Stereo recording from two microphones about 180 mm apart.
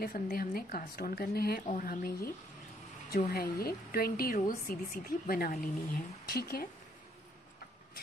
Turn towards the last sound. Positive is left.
turn(degrees=55)  # may be behind; listen again after turning